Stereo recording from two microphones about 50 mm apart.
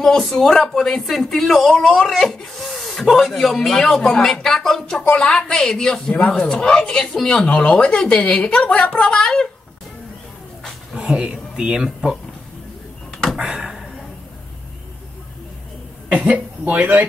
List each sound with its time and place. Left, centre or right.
0.0 s a woman's voice: centre
10.9 s speech: centre
13.4 s a sound: centre
16.1 s speech: right